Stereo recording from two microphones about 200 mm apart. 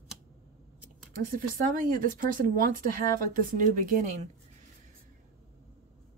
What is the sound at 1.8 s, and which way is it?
Speech, 45° right (ahead or behind).